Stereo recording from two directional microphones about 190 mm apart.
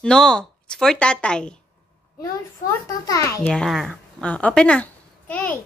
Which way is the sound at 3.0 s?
15° left (ahead or behind).